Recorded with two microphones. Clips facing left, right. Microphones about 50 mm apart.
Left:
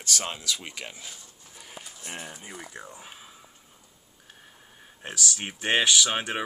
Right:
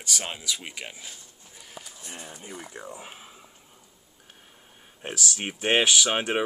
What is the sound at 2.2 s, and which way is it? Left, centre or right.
Speech, centre.